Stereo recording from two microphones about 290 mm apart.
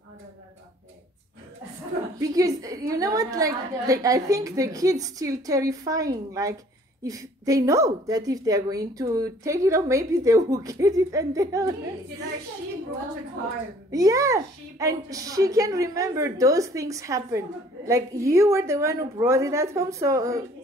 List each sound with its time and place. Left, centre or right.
2.1 s a woman's voice: centre
13.8 s a woman's voice: centre